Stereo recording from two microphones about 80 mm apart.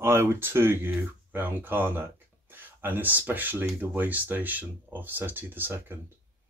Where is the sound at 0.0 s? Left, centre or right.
Right.